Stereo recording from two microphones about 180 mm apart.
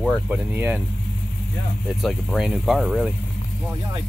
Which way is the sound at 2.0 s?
Centre (ahead or behind).